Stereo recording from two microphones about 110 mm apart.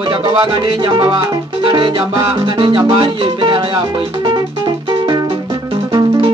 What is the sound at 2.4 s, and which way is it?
Music, 55° right (ahead or behind).